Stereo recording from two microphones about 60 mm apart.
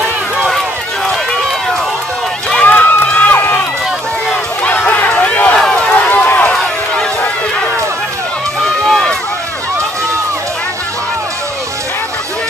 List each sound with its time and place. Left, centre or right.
2.5 s run: left
4.6 s music: left
5.2 s run: left
5.6 s run: centre
5.9 s run: left
8.6 s run: centre